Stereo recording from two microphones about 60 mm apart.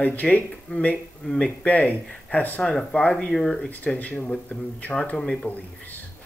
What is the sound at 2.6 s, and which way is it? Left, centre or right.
Speech, centre.